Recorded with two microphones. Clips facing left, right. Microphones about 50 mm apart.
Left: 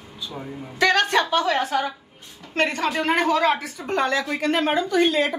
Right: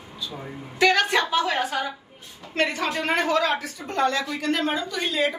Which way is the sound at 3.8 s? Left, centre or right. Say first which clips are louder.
Left 1 dB; left.